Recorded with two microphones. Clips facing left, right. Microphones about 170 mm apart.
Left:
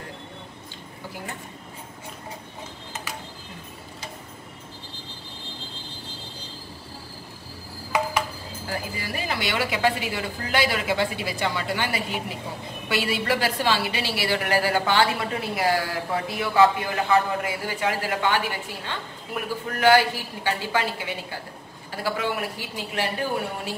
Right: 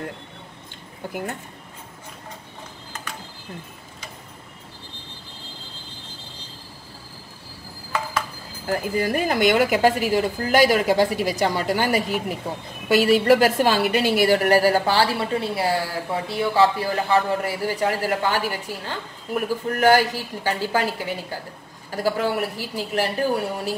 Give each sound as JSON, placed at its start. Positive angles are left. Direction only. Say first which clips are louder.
{"t": 8.6, "sound": "a woman's voice", "louder": "right 10 dB", "side_deg": -50}